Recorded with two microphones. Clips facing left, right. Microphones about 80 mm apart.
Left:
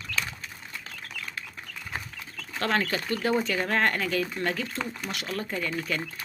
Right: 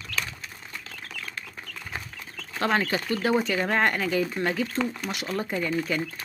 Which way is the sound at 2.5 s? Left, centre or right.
Centre.